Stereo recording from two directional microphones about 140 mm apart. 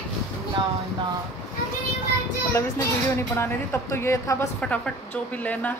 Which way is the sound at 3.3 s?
20° left (ahead or behind).